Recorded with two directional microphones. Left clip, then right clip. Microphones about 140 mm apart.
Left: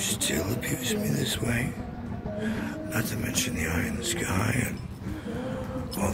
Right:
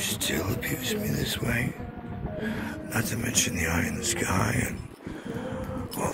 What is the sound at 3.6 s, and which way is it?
Speech, 50° right (ahead or behind).